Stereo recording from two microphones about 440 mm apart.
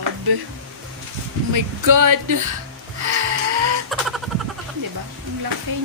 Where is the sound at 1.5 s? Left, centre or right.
Right.